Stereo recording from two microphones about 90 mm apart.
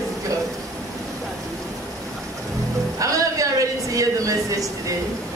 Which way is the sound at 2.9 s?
40° right (ahead or behind).